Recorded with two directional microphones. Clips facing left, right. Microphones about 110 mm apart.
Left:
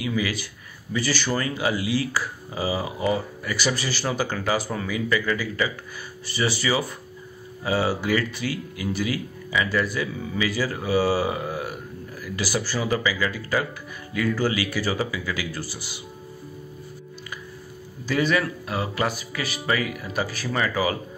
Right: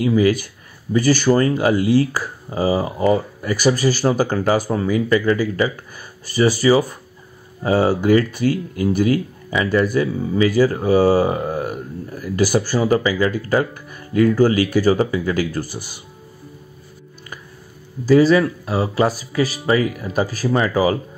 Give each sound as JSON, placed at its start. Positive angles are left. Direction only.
{"t": 0.0, "sound": "speech", "side_deg": -45}
{"t": 18.0, "sound": "speech", "side_deg": -35}